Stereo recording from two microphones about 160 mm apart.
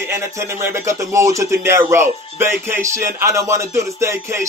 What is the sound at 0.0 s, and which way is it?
Music, 15° right (ahead or behind).